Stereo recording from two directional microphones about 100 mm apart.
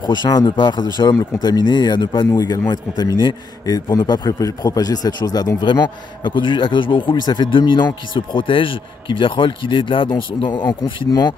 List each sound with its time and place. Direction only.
0.0 s a man's voice: 45° left (ahead or behind)